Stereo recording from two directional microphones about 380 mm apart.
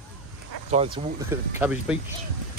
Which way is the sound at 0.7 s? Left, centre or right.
Centre.